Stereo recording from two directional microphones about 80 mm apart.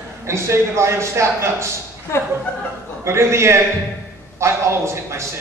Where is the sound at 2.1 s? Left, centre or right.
Left.